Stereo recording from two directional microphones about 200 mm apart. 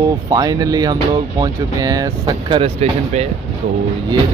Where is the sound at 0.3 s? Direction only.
20° right (ahead or behind).